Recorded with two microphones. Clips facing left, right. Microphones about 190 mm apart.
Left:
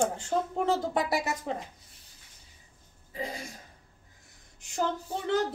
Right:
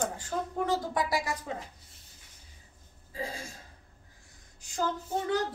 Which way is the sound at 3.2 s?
20° left (ahead or behind).